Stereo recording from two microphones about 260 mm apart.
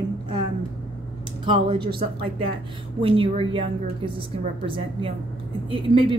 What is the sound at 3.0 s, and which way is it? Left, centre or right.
Speech, centre.